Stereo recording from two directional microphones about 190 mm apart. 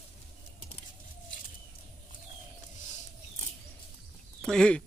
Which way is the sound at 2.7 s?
40° left (ahead or behind).